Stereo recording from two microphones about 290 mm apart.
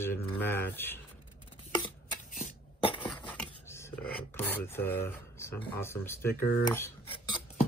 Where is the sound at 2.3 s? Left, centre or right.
Left.